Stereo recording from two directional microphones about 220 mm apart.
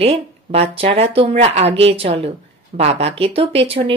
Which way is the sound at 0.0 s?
25° right (ahead or behind).